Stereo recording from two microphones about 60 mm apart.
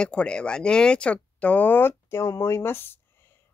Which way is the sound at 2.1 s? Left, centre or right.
Left.